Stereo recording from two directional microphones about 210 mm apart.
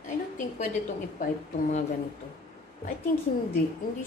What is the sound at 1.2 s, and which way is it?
Speech, 35° left (ahead or behind).